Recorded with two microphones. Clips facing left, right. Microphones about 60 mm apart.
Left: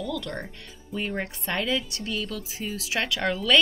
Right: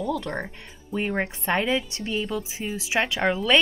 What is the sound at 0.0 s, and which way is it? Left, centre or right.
Speech, right.